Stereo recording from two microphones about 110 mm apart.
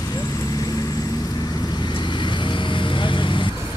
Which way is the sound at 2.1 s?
45° left (ahead or behind).